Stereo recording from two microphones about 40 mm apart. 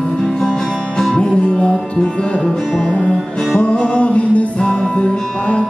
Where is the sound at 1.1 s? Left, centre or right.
Left.